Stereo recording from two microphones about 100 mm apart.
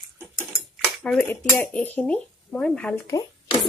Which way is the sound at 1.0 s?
15° left (ahead or behind).